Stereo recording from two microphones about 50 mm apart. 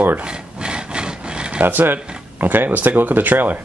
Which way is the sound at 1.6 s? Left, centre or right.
Right.